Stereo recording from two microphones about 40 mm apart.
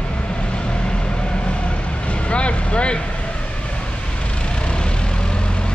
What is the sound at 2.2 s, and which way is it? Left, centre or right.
Vehicle, left.